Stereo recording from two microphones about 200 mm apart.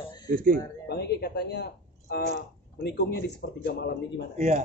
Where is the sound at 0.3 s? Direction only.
45° right (ahead or behind).